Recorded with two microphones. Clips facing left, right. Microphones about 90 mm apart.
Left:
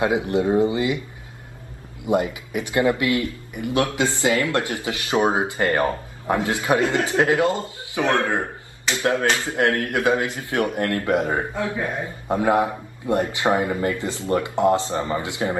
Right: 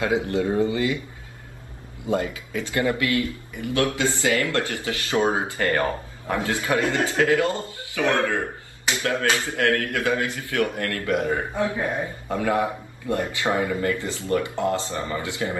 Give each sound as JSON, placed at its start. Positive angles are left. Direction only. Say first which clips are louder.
{"t": 0.0, "sound": "speech", "louder": "left 2 dB", "side_deg": 20}
{"t": 2.0, "sound": "speech", "louder": "left 3 dB", "side_deg": 20}